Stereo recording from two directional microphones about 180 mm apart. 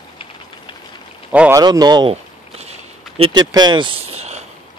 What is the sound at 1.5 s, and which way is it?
Speech, 20° right (ahead or behind).